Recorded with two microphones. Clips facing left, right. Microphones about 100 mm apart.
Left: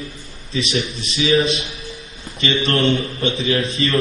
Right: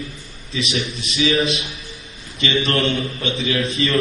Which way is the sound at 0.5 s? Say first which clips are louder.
Left 2 dB; 35° left (ahead or behind).